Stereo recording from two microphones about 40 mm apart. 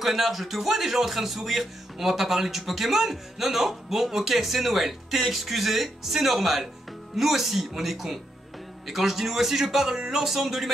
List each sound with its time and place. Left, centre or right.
0.0 s speech: centre